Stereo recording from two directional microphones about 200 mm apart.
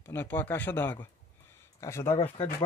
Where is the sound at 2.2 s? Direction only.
30° left (ahead or behind).